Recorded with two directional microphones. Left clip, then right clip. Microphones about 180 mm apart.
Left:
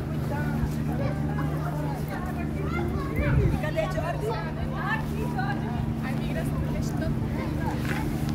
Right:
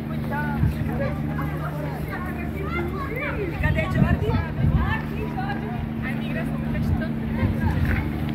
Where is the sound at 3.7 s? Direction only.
80° left.